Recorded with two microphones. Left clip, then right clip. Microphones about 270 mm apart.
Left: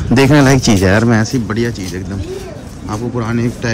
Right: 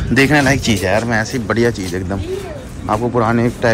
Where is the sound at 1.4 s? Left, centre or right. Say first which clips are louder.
Right 3 dB; centre.